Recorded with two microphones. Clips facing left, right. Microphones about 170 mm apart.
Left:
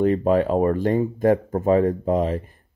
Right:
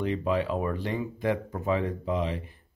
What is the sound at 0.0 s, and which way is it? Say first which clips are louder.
Speech: left 9 dB; 45° left (ahead or behind).